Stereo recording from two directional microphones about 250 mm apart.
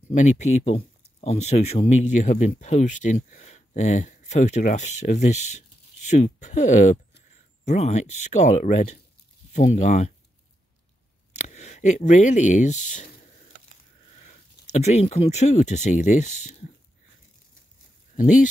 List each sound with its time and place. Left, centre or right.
0.1 s speech: left
11.3 s speech: left
14.1 s speech: left